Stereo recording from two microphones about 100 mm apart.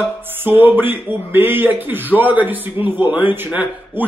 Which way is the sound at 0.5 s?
20° right (ahead or behind).